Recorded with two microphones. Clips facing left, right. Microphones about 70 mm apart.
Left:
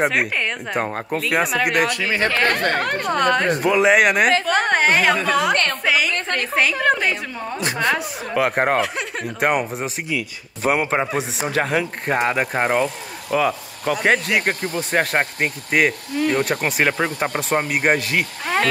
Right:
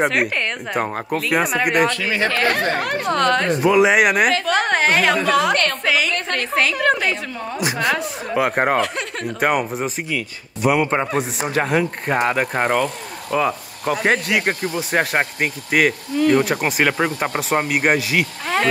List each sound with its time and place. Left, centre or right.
0.0 s speech: centre
1.6 s speech: right
2.1 s speech: left
3.1 s speech: centre
5.9 s a sound: centre
6.3 s speech: centre
10.6 s speech: left
10.9 s speech: centre
13.4 s speech: centre